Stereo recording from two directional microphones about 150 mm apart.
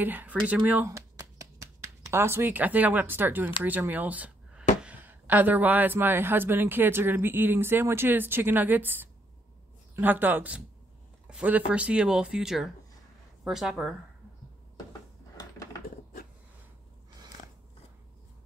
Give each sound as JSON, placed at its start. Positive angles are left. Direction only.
{"t": 0.0, "sound": "a man's voice", "side_deg": -10}
{"t": 14.9, "sound": "dishes", "side_deg": 25}